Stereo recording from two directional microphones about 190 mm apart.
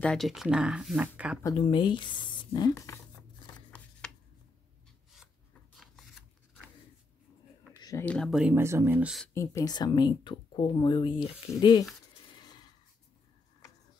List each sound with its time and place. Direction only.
0.0 s speech: centre (ahead or behind)
1.4 s speech: 25° left (ahead or behind)
3.5 s a sound: 5° left (ahead or behind)
5.8 s shuffling cards: centre (ahead or behind)
8.0 s speech: 5° left (ahead or behind)
9.3 s speech: 15° left (ahead or behind)
12.3 s a sound: 20° left (ahead or behind)